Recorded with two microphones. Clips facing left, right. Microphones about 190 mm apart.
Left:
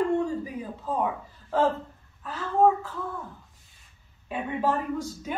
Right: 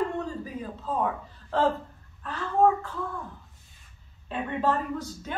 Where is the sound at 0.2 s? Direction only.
15° left (ahead or behind).